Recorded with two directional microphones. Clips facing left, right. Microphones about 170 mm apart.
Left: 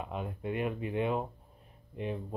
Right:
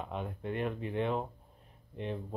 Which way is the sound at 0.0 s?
5° left (ahead or behind).